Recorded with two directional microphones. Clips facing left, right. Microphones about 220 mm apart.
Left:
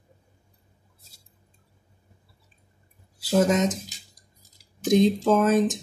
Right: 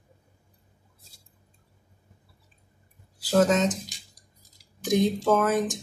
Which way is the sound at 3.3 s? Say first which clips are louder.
Even; 20° left (ahead or behind).